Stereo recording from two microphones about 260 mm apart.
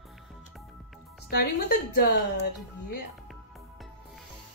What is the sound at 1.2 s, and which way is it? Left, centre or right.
A woman's voice, left.